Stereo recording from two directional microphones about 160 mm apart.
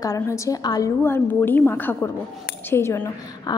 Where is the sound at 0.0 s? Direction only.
20° left (ahead or behind).